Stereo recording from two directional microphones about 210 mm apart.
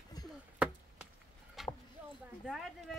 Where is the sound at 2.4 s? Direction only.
Centre (ahead or behind).